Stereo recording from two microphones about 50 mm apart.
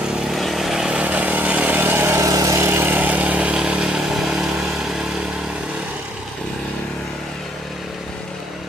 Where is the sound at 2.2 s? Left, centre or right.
Right.